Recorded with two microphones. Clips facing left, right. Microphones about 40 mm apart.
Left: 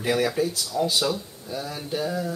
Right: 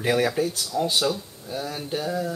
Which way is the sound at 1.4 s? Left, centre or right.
Centre.